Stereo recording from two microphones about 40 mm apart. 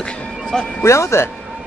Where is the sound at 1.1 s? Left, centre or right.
Left.